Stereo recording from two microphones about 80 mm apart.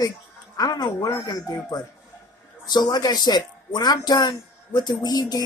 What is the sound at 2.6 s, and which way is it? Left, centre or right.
Speech, left.